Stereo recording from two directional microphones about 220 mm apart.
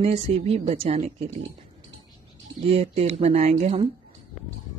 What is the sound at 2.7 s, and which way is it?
A woman's voice, 30° right (ahead or behind).